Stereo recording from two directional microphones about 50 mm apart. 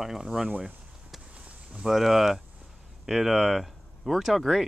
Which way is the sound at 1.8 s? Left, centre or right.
Centre.